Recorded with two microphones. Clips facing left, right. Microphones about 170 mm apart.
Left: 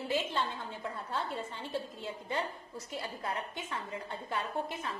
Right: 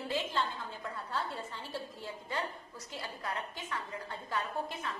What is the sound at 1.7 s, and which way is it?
A woman's voice, 25° left (ahead or behind).